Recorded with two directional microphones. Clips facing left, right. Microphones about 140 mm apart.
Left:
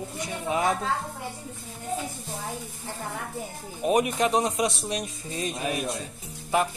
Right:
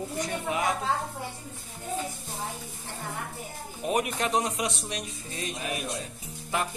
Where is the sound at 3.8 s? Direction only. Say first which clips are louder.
Left 5 dB; 15° left (ahead or behind).